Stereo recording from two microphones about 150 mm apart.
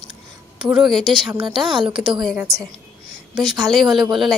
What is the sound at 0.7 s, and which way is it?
A woman's voice, centre (ahead or behind).